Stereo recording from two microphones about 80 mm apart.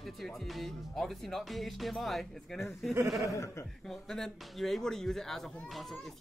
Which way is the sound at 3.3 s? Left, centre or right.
Left.